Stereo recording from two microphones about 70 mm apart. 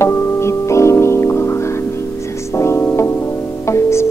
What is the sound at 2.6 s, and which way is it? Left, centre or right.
Music, left.